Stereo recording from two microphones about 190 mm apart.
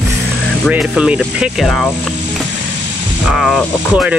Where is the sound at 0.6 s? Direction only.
5° right (ahead or behind).